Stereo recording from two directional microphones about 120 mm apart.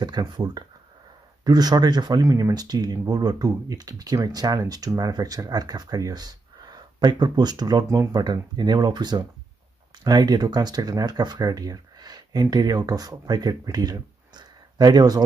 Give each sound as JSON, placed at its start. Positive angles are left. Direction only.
{"t": 0.0, "sound": "speech", "side_deg": -35}